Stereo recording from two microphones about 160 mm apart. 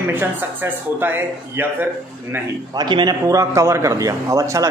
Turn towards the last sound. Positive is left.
turn(degrees=-20)  # may be behind; listen again after turning